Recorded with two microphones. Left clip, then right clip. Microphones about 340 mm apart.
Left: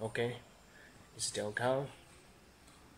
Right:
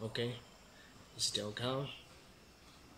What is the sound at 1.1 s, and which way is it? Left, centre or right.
Speech, centre.